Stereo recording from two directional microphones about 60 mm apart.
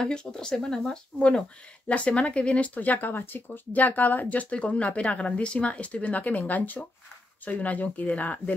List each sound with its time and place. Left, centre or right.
0.0 s speech: centre
1.9 s speech: centre